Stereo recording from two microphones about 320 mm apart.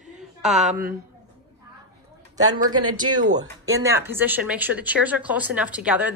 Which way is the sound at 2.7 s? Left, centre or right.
Right.